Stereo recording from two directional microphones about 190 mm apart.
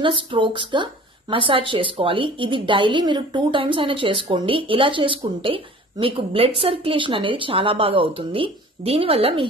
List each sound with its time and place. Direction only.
0.0 s a woman's voice: 25° right (ahead or behind)